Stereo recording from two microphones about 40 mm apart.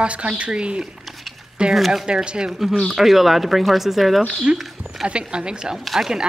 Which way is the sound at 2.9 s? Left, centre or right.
Centre.